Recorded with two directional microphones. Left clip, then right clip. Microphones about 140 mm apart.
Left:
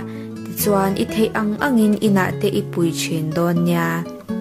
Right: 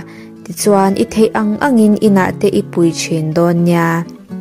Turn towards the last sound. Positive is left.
turn(degrees=-35)  # may be behind; listen again after turning